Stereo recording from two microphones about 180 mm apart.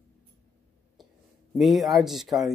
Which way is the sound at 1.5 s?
Centre (ahead or behind).